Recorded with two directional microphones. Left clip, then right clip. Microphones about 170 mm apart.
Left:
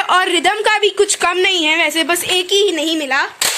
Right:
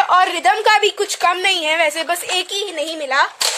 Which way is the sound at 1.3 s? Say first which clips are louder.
Left 3 dB; 30° right (ahead or behind).